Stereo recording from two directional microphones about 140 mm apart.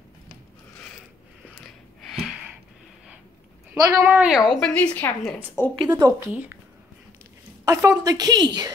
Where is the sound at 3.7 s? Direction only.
15° right (ahead or behind).